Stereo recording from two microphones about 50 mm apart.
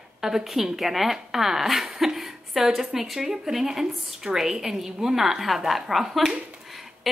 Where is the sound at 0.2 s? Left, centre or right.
Centre.